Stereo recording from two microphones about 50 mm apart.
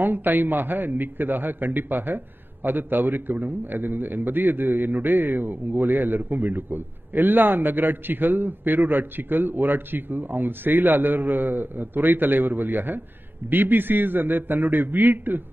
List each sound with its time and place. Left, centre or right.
0.0 s a man's voice: right